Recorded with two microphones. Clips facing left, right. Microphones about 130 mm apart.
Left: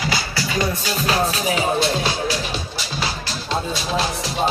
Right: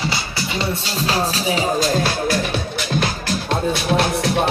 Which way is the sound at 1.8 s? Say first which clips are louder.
Right 2 dB; 50° right (ahead or behind).